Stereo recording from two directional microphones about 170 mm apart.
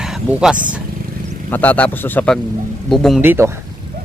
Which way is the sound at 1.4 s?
10° left (ahead or behind).